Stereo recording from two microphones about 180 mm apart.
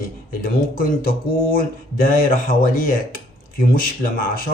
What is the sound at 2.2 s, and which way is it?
Speech, 50° left (ahead or behind).